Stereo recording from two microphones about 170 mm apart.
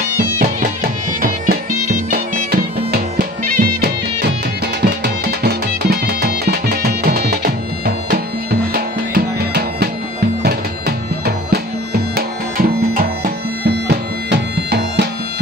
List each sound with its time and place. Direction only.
0.2 s music: 50° right (ahead or behind)
4.8 s music: 75° right (ahead or behind)